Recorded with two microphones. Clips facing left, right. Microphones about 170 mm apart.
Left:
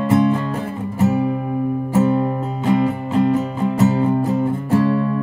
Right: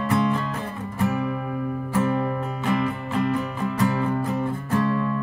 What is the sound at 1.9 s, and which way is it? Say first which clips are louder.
Music: left 6 dB; 15° left (ahead or behind).